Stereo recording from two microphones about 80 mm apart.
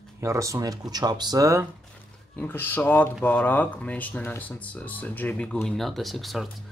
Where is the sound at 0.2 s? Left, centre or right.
Right.